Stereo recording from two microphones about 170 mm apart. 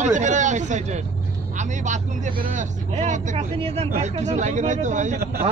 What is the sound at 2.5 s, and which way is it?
Speech, 45° right (ahead or behind).